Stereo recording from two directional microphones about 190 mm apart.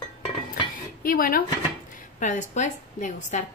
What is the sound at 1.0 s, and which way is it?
A woman's voice, 50° left (ahead or behind).